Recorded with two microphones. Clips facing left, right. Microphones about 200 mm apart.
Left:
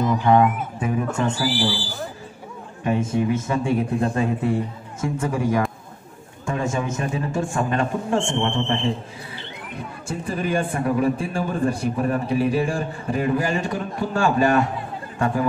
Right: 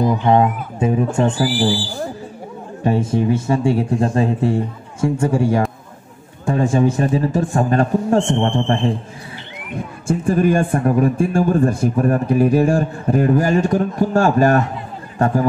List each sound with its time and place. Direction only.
0.1 s speech: 25° right (ahead or behind)
1.4 s a man's voice: 50° right (ahead or behind)
2.8 s a man's voice: 35° right (ahead or behind)
10.0 s a man's voice: 45° right (ahead or behind)